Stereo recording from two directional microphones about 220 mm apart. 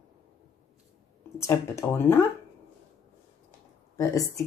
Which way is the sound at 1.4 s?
10° left (ahead or behind).